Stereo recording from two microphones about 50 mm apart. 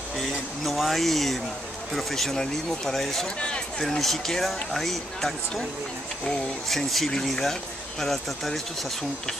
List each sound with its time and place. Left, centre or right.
0.2 s speech: centre
3.3 s speech: centre
4.0 s speech: centre